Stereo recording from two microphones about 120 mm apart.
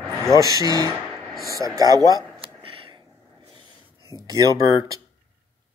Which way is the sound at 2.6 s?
45° right (ahead or behind).